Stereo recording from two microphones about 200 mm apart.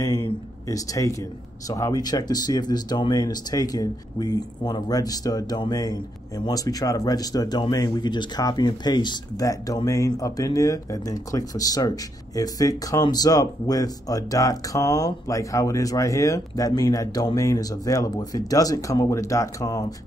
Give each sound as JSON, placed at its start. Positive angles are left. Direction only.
{"t": 0.7, "sound": "speech", "side_deg": 15}